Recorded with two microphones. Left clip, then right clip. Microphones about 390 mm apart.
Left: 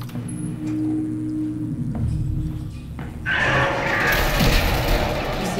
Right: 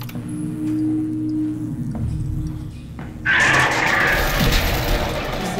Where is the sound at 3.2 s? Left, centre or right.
Right.